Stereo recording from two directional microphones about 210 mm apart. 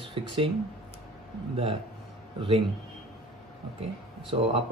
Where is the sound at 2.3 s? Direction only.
25° right (ahead or behind).